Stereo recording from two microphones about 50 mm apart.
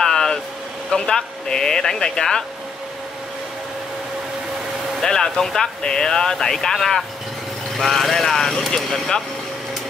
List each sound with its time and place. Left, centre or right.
0.0 s vehicle: centre
0.9 s speech: centre
5.0 s speech: centre